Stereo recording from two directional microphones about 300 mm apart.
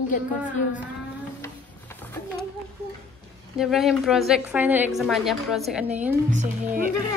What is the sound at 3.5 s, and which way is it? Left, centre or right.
A woman's voice, centre.